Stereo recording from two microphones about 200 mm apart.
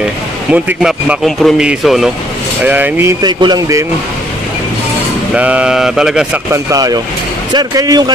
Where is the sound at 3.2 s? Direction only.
20° right (ahead or behind).